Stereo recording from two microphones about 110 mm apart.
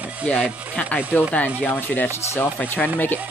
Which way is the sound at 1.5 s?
15° left (ahead or behind).